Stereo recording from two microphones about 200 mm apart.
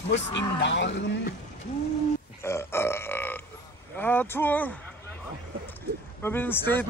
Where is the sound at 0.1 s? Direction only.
60° left (ahead or behind).